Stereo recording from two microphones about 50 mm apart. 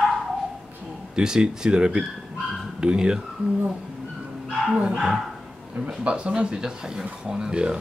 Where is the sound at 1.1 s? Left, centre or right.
Centre.